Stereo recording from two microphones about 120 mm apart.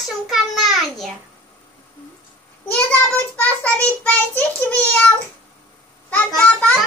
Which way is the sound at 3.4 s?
15° left (ahead or behind).